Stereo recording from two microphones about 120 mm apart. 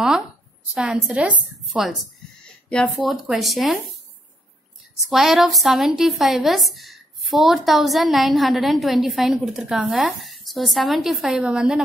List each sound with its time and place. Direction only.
0.7 s a woman's voice: 5° right (ahead or behind)
5.1 s a woman's voice: centre (ahead or behind)